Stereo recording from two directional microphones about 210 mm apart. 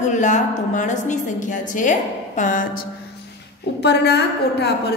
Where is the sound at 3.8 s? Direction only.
50° left (ahead or behind).